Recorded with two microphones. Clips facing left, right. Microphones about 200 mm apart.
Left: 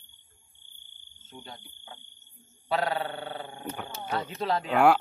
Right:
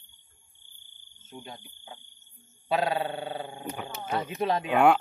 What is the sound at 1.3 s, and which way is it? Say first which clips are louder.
A man's voice: right 2 dB; 20° right (ahead or behind).